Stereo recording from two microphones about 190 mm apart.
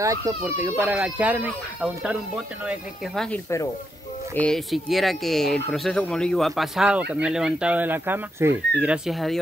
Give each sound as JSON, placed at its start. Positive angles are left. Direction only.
{"t": 0.0, "sound": "speech", "side_deg": -15}
{"t": 3.3, "sound": "speech", "side_deg": 15}
{"t": 4.4, "sound": "speech", "side_deg": 0}